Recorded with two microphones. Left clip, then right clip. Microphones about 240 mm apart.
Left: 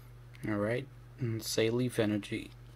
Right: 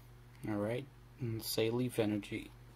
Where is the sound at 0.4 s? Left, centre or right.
Centre.